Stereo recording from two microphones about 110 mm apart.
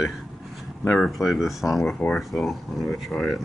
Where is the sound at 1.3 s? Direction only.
Centre (ahead or behind).